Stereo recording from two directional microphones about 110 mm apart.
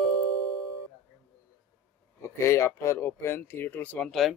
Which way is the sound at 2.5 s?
25° left (ahead or behind).